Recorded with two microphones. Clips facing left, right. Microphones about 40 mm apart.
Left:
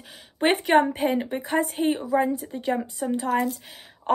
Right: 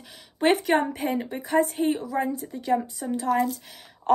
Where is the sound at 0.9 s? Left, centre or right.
Left.